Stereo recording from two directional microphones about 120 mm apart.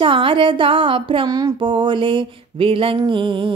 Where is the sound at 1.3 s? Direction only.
30° right (ahead or behind).